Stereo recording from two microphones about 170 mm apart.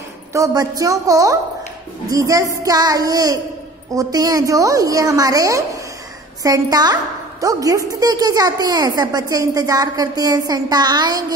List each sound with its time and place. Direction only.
0.3 s a woman's voice: 20° right (ahead or behind)